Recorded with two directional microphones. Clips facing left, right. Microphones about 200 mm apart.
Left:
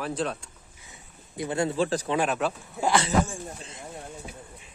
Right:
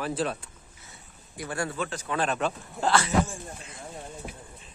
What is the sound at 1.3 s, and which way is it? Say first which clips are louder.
Speech: left 6 dB; 20° left (ahead or behind).